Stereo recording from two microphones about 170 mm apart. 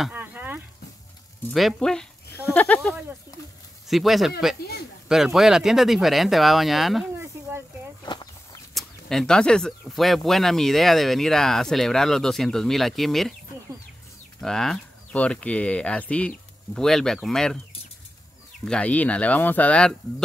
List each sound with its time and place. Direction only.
0.0 s a sound: 10° right (ahead or behind)
1.5 s speech: centre (ahead or behind)
8.0 s a sound: 25° left (ahead or behind)
8.7 s speech: 5° left (ahead or behind)
14.4 s speech: 5° left (ahead or behind)
18.7 s speech: 5° left (ahead or behind)